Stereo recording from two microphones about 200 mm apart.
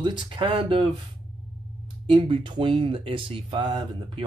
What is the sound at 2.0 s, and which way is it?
Speech, 25° right (ahead or behind).